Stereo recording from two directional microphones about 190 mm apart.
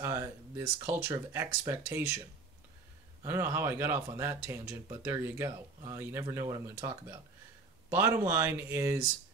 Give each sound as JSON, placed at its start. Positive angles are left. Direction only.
{"t": 0.0, "sound": "speech", "side_deg": -15}
{"t": 3.3, "sound": "speech", "side_deg": -15}